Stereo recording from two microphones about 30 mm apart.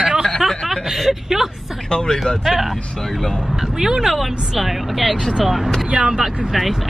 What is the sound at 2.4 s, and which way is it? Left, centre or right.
Speech, centre.